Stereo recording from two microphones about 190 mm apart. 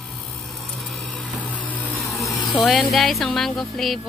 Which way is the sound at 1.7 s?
5° left (ahead or behind).